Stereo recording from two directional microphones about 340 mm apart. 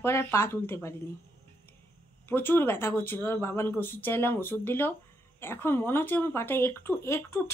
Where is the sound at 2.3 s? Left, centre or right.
Centre.